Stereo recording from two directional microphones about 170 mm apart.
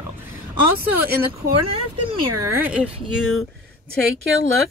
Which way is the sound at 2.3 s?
15° right (ahead or behind).